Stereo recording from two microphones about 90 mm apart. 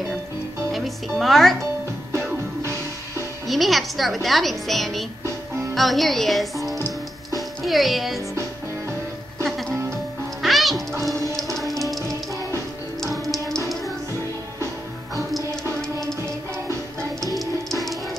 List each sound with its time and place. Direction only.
0.7 s speech: centre (ahead or behind)
2.1 s music: 30° right (ahead or behind)
3.4 s speech: centre (ahead or behind)
7.3 s music: centre (ahead or behind)
9.4 s music: 5° left (ahead or behind)
13.0 s music: centre (ahead or behind)
17.4 s music: centre (ahead or behind)